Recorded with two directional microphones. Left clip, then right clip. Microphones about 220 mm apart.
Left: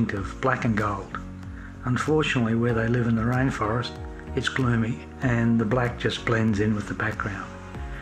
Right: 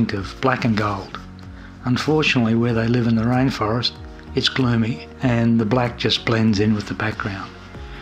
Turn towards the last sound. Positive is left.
turn(degrees=-40)  # may be behind; listen again after turning